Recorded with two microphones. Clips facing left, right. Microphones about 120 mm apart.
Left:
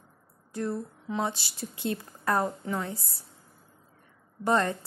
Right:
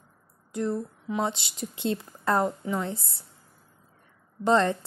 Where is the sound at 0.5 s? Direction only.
20° right (ahead or behind).